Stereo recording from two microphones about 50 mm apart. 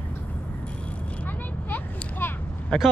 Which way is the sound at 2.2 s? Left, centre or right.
Left.